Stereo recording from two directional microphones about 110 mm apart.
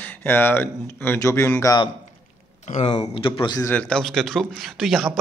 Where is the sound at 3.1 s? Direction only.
50° left (ahead or behind).